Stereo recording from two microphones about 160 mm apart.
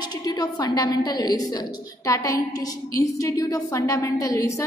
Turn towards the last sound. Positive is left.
turn(degrees=20)  # may be behind; listen again after turning